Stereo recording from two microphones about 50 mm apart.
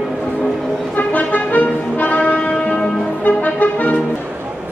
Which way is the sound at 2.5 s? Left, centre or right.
Centre.